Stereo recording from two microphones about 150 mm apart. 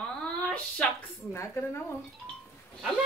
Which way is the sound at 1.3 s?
20° left (ahead or behind).